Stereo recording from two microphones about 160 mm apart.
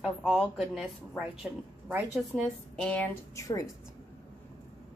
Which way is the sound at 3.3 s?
20° left (ahead or behind).